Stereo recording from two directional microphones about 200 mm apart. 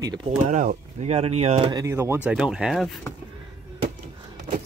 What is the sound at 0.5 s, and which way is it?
Speech, 40° right (ahead or behind).